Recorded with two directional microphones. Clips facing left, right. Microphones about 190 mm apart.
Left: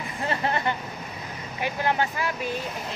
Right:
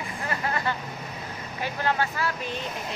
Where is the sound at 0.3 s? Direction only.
25° left (ahead or behind).